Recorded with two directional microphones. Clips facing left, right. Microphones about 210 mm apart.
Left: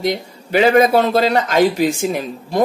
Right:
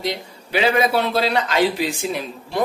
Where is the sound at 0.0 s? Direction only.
45° left (ahead or behind).